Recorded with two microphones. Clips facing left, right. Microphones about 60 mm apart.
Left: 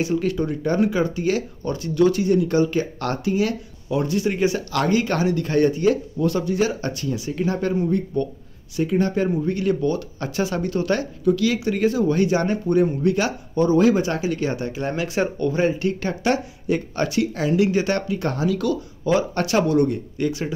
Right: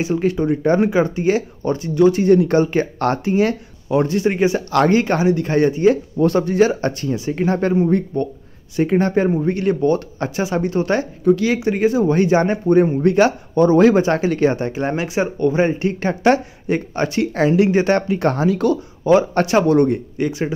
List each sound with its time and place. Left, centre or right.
0.0 s speech: right
2.2 s speech: right
6.1 s speech: right
10.3 s speech: right
20.2 s speech: right